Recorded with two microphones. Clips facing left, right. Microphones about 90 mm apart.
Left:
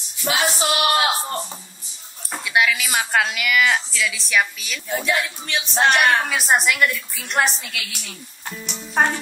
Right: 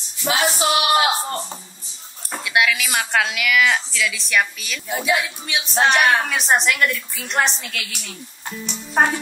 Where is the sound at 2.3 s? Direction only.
Centre (ahead or behind).